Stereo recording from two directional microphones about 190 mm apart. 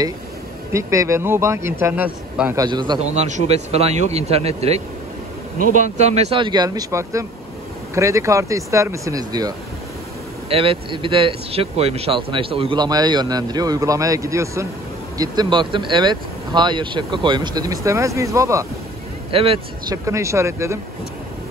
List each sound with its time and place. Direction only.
0.7 s a man's voice: 15° right (ahead or behind)
2.6 s speech: 25° right (ahead or behind)
3.0 s a man's voice: 35° right (ahead or behind); by 9.5 s 20° right (ahead or behind)
10.5 s speech: 30° right (ahead or behind)
19.3 s speech: 30° right (ahead or behind)
20.1 s a man's voice: 15° right (ahead or behind)